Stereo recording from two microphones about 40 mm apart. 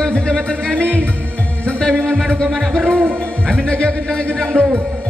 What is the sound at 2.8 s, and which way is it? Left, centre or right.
Music, right.